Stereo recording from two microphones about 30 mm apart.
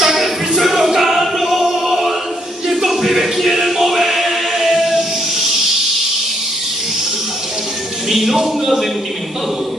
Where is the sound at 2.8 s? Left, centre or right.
Centre.